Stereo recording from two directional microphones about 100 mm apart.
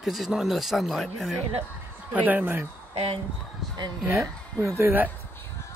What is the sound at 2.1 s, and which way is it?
Speech, 15° right (ahead or behind).